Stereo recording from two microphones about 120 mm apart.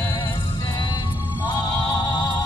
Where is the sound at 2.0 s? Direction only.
35° left (ahead or behind).